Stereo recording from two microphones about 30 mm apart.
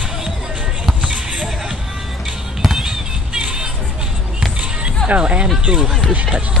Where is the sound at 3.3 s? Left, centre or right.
Right.